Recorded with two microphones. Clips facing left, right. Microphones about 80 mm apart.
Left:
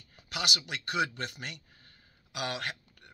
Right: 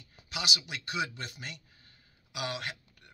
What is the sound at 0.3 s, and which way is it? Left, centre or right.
Speech, left.